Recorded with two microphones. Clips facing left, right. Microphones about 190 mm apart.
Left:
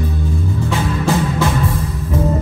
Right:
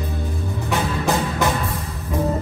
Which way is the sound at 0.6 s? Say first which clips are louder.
Left 2 dB; 20° right (ahead or behind).